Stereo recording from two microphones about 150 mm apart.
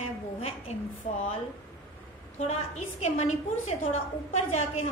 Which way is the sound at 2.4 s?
45° left (ahead or behind).